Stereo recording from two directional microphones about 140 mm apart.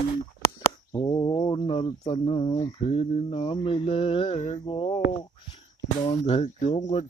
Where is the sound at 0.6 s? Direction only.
25° left (ahead or behind).